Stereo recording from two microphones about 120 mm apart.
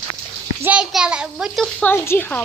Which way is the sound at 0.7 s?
10° right (ahead or behind).